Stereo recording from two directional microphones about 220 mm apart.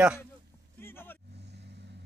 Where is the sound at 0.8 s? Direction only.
10° left (ahead or behind).